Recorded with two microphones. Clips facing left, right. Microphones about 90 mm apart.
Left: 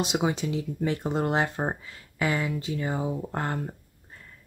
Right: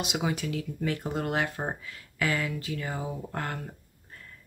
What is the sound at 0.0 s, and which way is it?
Speech, 30° left (ahead or behind).